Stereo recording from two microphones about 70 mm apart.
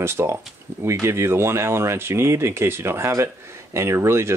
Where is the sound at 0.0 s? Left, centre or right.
Right.